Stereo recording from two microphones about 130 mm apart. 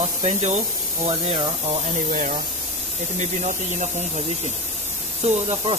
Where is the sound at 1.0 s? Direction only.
50° right (ahead or behind).